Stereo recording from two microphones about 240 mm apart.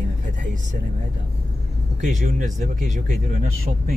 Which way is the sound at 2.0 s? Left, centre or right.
Right.